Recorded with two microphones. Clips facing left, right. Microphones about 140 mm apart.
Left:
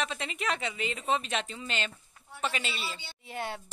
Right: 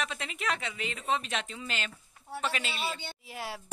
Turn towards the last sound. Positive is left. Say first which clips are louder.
# left 3 dB
turn(degrees=0)  # may be behind; listen again after turning